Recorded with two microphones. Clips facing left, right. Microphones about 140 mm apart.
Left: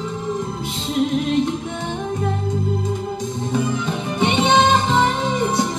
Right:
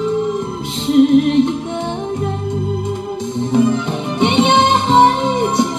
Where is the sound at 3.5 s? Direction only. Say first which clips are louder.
Right 8 dB; 20° right (ahead or behind).